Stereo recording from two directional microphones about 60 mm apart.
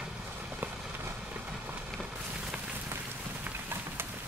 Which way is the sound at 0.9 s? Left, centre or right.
Right.